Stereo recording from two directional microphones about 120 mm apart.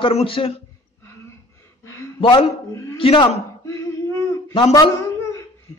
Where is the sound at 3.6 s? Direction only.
25° left (ahead or behind).